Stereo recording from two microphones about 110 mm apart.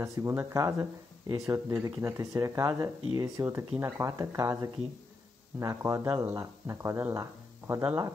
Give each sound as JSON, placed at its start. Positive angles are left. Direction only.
{"t": 0.0, "sound": "speech", "side_deg": -25}